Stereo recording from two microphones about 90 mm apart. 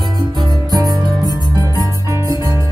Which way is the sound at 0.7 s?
45° right (ahead or behind).